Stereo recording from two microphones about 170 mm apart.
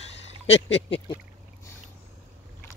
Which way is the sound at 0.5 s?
35° left (ahead or behind).